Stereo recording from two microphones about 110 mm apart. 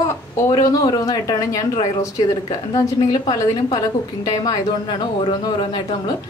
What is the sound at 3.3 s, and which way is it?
Speech, 35° left (ahead or behind).